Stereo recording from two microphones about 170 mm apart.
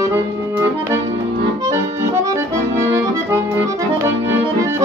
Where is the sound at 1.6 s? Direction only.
20° right (ahead or behind).